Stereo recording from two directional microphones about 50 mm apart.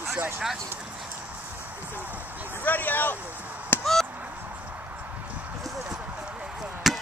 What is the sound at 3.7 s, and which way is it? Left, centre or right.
Chop, left.